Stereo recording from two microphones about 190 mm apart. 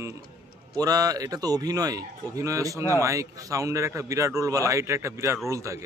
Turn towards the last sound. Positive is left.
turn(degrees=-15)  # may be behind; listen again after turning